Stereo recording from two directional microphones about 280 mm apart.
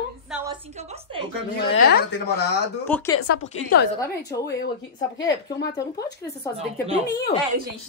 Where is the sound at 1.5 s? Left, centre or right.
Left.